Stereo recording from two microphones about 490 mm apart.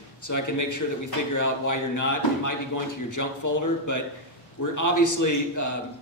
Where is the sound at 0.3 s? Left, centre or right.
Left.